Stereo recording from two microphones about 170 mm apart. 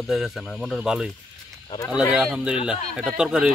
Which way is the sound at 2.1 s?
5° right (ahead or behind).